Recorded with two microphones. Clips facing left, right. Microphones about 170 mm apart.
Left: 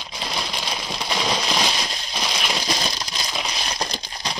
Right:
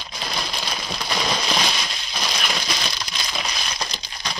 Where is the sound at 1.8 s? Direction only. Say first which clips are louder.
Left 2 dB; 35° left (ahead or behind).